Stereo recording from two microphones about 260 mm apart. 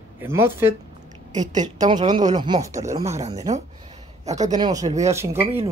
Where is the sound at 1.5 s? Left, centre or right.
Right.